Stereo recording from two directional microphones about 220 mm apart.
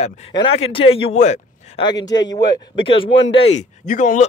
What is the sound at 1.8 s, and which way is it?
Speech, 20° left (ahead or behind).